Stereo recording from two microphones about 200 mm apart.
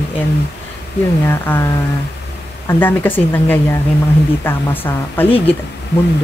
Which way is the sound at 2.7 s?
10° left (ahead or behind).